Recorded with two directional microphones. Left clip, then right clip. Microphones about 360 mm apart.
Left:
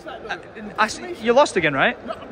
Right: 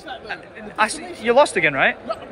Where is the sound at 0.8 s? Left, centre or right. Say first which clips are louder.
Right 1 dB; centre.